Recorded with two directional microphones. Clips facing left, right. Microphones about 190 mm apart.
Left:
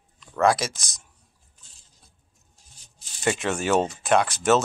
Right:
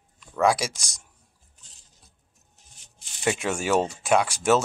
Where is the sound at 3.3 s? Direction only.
10° right (ahead or behind).